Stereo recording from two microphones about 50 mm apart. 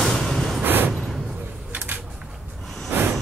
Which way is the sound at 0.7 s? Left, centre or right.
Right.